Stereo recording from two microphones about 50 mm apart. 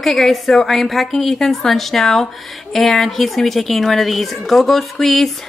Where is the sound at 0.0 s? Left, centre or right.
Centre.